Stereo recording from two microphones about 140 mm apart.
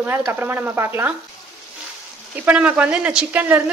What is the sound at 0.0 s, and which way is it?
A woman's voice, 15° right (ahead or behind).